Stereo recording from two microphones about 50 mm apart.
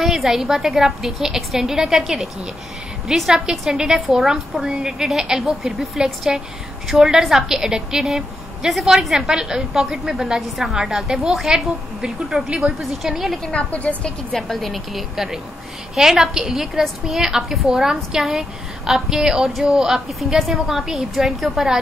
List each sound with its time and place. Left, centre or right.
0.0 s a woman's voice: centre
9.3 s a woman's voice: centre
13.6 s a woman's voice: left
14.3 s a woman's voice: centre